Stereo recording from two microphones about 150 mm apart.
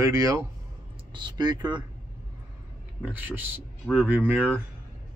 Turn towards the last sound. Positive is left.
turn(degrees=-10)  # may be behind; listen again after turning